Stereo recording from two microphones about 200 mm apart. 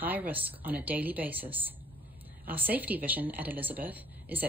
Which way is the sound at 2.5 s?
10° right (ahead or behind).